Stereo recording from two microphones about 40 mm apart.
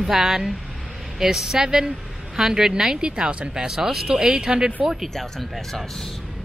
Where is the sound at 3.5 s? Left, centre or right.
Centre.